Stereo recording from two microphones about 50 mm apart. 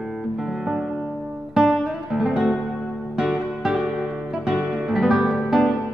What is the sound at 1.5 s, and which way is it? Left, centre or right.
Music, centre.